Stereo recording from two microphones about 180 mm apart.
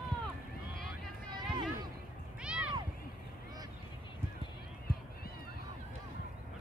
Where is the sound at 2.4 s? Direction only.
5° right (ahead or behind).